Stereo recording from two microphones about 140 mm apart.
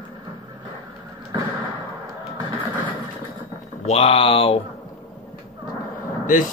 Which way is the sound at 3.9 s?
45° left (ahead or behind).